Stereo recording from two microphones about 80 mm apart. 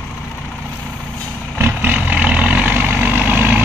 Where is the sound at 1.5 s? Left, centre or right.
Right.